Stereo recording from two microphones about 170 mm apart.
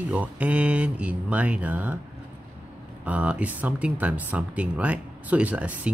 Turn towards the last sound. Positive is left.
turn(degrees=-10)  # may be behind; listen again after turning